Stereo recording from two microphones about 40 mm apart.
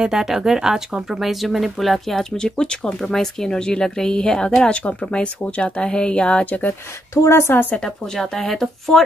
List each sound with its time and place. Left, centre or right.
0.0 s speech: centre
2.3 s speech: left
4.7 s speech: left
5.6 s speech: left
6.4 s speech: left
7.2 s a woman's voice: left
7.7 s speech: centre